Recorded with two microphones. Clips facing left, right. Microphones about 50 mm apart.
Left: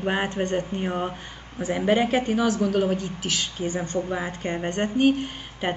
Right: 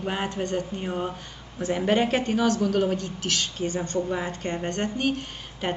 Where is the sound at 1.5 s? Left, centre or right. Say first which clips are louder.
Left 1 dB; centre.